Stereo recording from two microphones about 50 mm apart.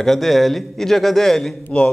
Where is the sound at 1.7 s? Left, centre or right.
Left.